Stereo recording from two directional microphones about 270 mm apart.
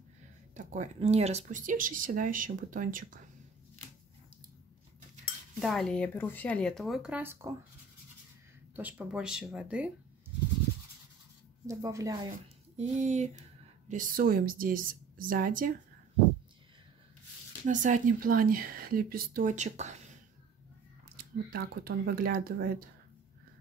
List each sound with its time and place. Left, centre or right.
0.6 s speech: right
5.6 s speech: centre
8.7 s speech: centre
11.6 s speech: centre
12.7 s speech: right
17.6 s speech: right
21.2 s speech: right